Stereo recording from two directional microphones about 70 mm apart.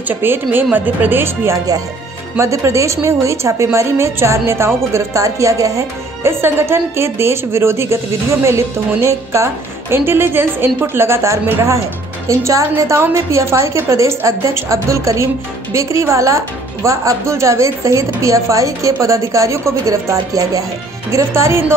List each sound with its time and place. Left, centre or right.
0.1 s a woman's voice: right
6.4 s a woman's voice: right